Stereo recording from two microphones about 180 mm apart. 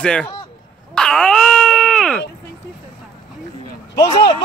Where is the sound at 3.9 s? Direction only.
20° left (ahead or behind).